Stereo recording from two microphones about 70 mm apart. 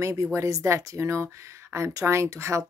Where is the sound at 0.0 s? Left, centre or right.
Right.